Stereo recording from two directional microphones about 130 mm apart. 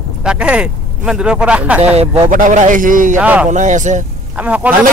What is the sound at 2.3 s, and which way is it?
Speech, 75° right (ahead or behind).